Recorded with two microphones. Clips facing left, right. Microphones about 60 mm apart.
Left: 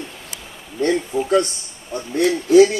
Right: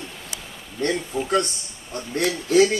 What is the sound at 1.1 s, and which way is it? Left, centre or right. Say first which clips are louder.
Speech: left 5 dB; centre.